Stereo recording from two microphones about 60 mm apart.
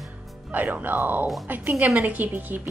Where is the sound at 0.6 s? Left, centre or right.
Right.